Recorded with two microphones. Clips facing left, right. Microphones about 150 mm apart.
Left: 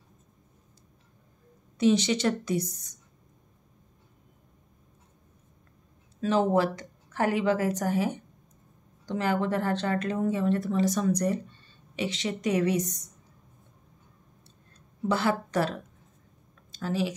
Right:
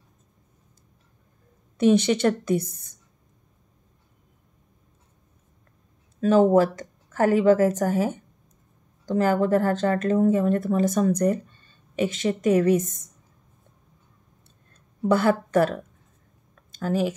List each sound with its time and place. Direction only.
1.8 s a woman's voice: 55° right (ahead or behind)
6.2 s speech: 45° right (ahead or behind)
14.7 s a sound: 50° right (ahead or behind)
16.7 s speech: 50° right (ahead or behind)